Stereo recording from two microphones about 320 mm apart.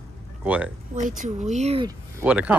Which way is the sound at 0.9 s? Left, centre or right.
Right.